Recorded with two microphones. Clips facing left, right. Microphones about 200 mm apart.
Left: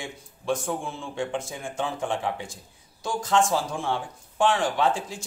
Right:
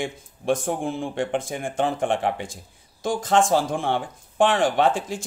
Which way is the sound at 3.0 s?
50° right (ahead or behind).